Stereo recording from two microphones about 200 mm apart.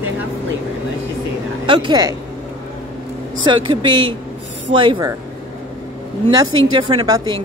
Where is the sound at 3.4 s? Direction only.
25° right (ahead or behind).